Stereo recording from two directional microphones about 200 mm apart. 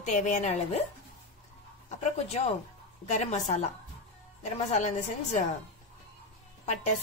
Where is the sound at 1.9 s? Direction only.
35° left (ahead or behind).